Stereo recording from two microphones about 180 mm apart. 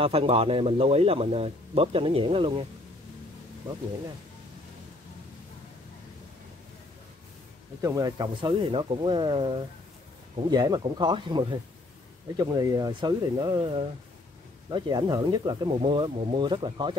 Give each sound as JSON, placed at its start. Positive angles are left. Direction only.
{"t": 0.0, "sound": "speech", "side_deg": -30}
{"t": 7.8, "sound": "speech", "side_deg": -20}